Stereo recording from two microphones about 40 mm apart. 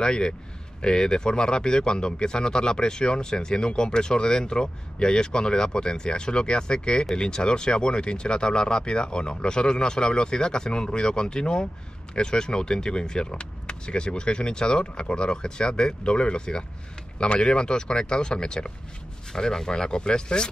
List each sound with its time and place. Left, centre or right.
0.0 s speech: left